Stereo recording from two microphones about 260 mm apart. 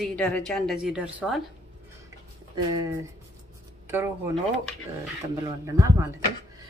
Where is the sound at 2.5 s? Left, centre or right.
Centre.